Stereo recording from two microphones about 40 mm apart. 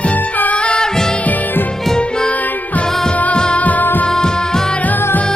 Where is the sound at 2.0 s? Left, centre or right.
Centre.